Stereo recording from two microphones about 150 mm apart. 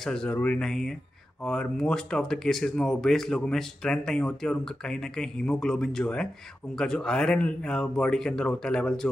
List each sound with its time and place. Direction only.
0.0 s speech: 5° left (ahead or behind)